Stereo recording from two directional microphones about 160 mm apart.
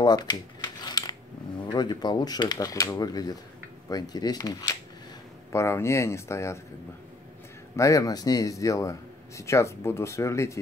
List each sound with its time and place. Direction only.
0.0 s a sound: 25° left (ahead or behind)
1.7 s a man's voice: 25° left (ahead or behind)
7.7 s a man's voice: 20° left (ahead or behind)